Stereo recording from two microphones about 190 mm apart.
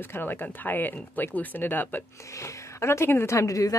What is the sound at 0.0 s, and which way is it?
Speech, 10° left (ahead or behind).